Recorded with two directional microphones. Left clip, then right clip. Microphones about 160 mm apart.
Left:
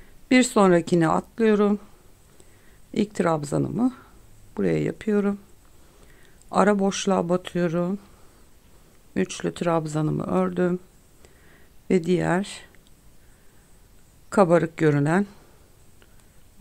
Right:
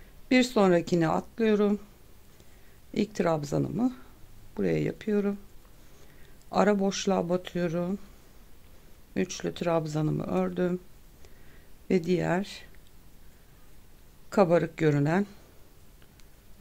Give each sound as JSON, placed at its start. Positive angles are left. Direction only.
{"t": 0.3, "sound": "speech", "side_deg": 25}
{"t": 2.9, "sound": "speech", "side_deg": 25}
{"t": 6.5, "sound": "speech", "side_deg": 25}
{"t": 9.1, "sound": "speech", "side_deg": 30}
{"t": 11.9, "sound": "speech", "side_deg": 25}
{"t": 14.3, "sound": "speech", "side_deg": 25}